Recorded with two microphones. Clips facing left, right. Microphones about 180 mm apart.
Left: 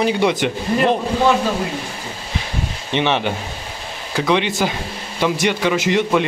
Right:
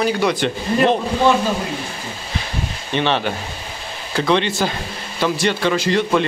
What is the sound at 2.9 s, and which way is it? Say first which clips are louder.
A man's voice: left 1 dB; 15° left (ahead or behind).